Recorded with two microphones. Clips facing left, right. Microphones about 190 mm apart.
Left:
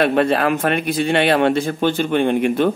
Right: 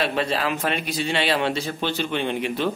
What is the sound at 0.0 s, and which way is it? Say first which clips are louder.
Speech: left 8 dB; 55° left (ahead or behind).